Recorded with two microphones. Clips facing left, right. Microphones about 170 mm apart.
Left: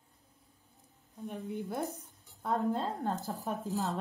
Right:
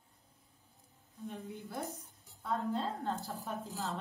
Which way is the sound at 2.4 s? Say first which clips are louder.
Left 4 dB; 50° left (ahead or behind).